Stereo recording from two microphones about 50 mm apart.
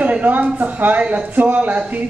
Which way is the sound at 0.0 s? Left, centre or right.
Right.